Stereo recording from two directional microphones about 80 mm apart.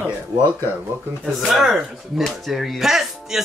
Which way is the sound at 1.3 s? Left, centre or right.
Centre.